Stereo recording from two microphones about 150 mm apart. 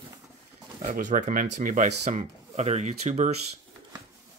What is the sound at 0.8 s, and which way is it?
Speech, 60° right (ahead or behind).